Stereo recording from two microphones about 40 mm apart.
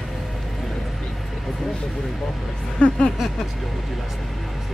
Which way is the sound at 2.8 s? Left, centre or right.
Left.